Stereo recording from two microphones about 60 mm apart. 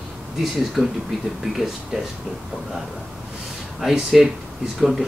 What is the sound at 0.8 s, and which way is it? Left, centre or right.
Speech, centre.